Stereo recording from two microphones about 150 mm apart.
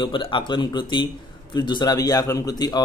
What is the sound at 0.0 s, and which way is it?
Speech, 35° left (ahead or behind).